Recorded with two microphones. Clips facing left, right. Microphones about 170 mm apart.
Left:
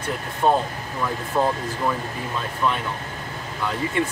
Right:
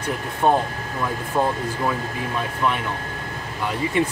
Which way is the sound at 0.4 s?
15° right (ahead or behind).